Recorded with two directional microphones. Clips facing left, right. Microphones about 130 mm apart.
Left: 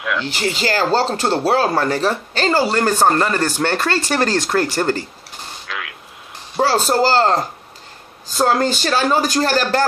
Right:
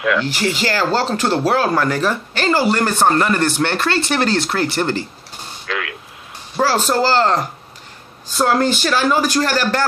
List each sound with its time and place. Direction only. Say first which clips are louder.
0.0 s speech: right 5 dB; centre (ahead or behind)
0.7 s speech: left 3 dB; 40° left (ahead or behind)
5.7 s a sound: right 6 dB; centre (ahead or behind)
6.7 s speech: left 1 dB; 40° left (ahead or behind)